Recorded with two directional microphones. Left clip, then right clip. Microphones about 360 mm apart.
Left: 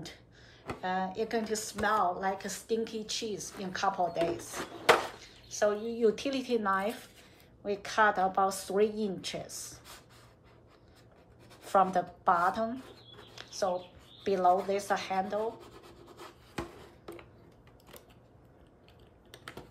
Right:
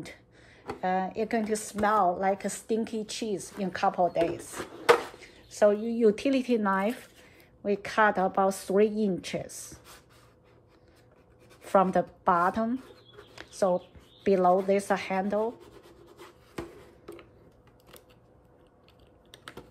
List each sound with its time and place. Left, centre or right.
0.7 s speech: centre
4.5 s a sound: centre
5.2 s speech: centre
11.6 s speech: centre
13.3 s a sound: centre
14.2 s speech: centre
15.6 s rub: centre